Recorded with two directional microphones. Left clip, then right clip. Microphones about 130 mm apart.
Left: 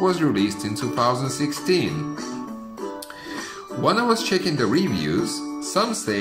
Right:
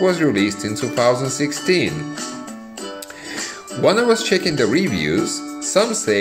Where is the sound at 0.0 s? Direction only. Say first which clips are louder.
Right 4 dB; 10° right (ahead or behind).